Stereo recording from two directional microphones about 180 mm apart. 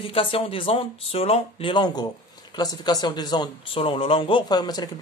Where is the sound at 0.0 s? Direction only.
30° left (ahead or behind).